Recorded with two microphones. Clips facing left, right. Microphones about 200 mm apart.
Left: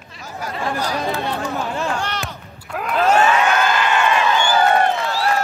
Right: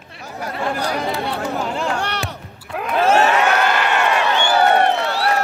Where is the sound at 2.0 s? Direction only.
65° right (ahead or behind).